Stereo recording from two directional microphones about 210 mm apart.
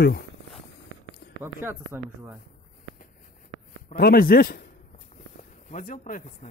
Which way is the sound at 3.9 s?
45° left (ahead or behind).